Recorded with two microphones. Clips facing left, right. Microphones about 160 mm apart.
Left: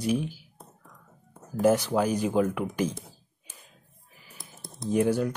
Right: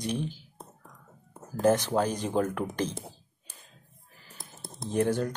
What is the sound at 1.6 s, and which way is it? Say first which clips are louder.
Speech: left 1 dB; 10° left (ahead or behind).